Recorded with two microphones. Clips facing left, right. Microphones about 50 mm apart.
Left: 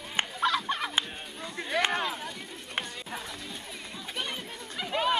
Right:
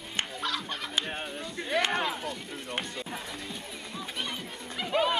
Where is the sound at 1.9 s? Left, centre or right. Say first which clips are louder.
Right 1 dB; centre.